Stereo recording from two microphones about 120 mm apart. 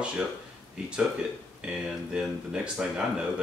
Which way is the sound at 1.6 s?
5° right (ahead or behind).